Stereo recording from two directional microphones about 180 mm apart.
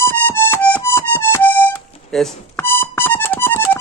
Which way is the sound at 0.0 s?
15° left (ahead or behind).